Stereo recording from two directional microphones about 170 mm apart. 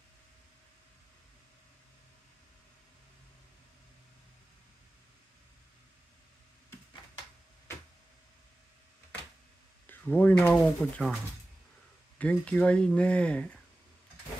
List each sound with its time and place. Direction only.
9.8 s speech: 10° left (ahead or behind)
12.2 s speech: 5° left (ahead or behind)